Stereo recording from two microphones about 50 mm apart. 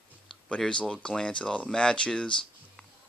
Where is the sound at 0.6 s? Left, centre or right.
Centre.